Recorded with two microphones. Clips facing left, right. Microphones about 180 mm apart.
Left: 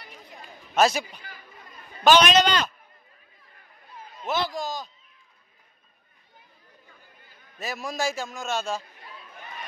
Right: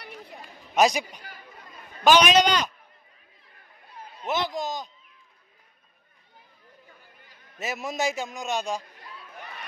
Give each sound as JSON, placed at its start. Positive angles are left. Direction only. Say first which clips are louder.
{"t": 0.7, "sound": "a man's voice", "louder": "even", "side_deg": -15}
{"t": 4.2, "sound": "a man's voice", "louder": "even", "side_deg": -20}
{"t": 7.5, "sound": "a man's voice", "louder": "right 1 dB", "side_deg": -20}